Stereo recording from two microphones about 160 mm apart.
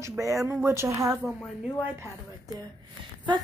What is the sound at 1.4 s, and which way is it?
Speech, 5° right (ahead or behind).